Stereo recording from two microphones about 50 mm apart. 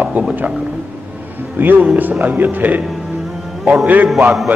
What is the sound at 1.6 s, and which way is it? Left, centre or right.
A man's voice, right.